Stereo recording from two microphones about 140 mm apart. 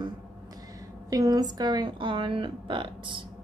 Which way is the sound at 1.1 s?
25° right (ahead or behind).